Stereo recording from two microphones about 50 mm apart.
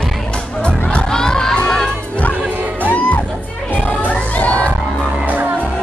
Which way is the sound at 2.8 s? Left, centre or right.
Left.